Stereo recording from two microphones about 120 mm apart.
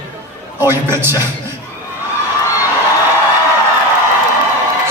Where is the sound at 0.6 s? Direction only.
20° right (ahead or behind).